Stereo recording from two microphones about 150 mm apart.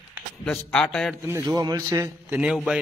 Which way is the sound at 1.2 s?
20° right (ahead or behind).